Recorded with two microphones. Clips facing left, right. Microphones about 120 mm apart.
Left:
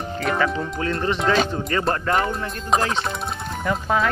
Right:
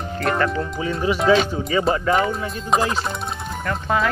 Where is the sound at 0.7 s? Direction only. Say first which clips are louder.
Right 2 dB; 10° right (ahead or behind).